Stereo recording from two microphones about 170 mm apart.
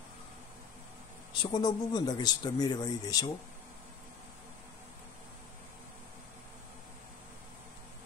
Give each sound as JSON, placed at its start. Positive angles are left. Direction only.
{"t": 1.4, "sound": "speech", "side_deg": 25}